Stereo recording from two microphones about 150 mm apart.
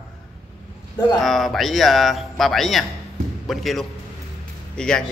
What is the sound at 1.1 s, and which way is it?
Speech, centre (ahead or behind).